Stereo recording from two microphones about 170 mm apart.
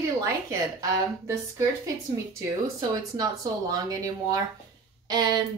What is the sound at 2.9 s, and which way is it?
A woman's voice, 20° right (ahead or behind).